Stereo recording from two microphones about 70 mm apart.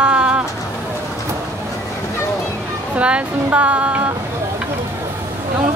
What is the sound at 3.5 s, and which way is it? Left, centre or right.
Music, centre.